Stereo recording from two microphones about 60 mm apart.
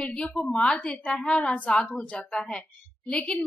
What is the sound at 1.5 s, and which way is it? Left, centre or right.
A child's voice, left.